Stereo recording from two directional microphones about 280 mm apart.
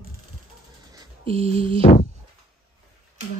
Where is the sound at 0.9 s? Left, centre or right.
Centre.